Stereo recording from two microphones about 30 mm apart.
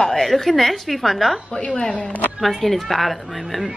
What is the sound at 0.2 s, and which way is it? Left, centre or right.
A woman's voice, centre.